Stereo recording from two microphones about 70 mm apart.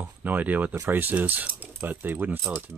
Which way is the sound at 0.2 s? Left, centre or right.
Right.